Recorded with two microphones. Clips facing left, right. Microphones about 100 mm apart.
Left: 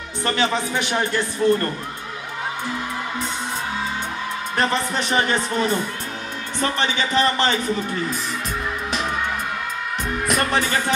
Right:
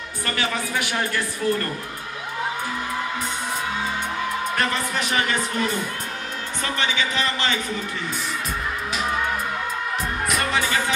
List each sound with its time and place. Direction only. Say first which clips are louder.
0.2 s a woman's voice: left 5 dB; 25° left (ahead or behind)
4.6 s a woman's voice: left 7 dB; 30° left (ahead or behind)
10.2 s music: left 3 dB; 40° left (ahead or behind)